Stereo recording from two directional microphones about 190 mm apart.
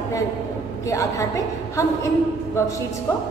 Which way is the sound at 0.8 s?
15° left (ahead or behind).